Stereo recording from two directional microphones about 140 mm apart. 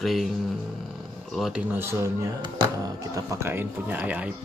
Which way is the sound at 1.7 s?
20° right (ahead or behind).